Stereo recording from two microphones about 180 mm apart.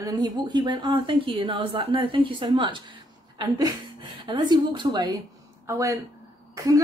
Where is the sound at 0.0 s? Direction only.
20° right (ahead or behind).